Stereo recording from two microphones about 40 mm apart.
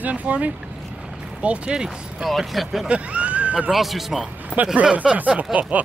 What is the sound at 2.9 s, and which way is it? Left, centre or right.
Speech, right.